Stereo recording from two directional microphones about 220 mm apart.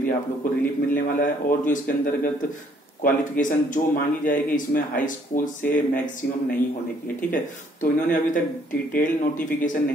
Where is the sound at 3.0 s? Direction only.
35° left (ahead or behind).